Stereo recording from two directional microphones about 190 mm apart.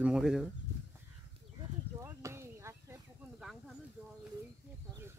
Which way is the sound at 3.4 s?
Centre (ahead or behind).